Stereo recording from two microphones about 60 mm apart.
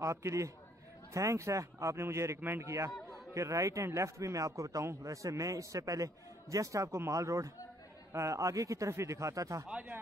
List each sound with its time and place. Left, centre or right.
0.0 s a man's voice: right